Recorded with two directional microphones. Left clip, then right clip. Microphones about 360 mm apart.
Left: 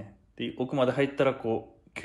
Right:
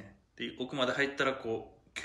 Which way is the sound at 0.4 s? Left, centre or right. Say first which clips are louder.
Left 6 dB; centre.